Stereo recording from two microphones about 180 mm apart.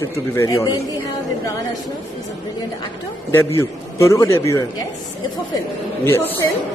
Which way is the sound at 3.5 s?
15° left (ahead or behind).